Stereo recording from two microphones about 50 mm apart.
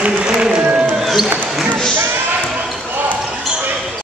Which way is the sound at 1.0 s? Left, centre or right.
Centre.